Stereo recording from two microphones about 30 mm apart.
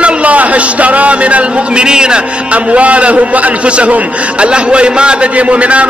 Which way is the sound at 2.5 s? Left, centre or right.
Right.